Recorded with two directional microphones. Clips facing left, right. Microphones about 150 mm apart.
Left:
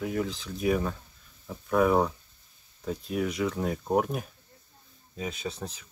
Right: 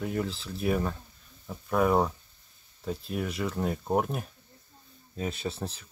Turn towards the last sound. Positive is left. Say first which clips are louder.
# right 1 dB
turn(degrees=-5)  # may be behind; listen again after turning